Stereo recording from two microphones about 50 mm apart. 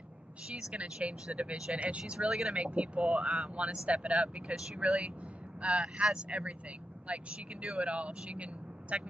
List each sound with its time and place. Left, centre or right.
0.5 s speech: centre
2.1 s speech: centre
2.5 s speech: right
5.6 s speech: right